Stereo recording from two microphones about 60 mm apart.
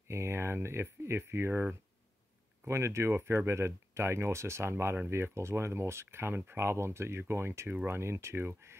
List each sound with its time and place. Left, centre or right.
0.1 s speech: right
2.7 s speech: right